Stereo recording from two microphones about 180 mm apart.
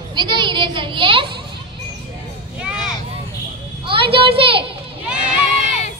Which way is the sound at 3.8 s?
30° right (ahead or behind).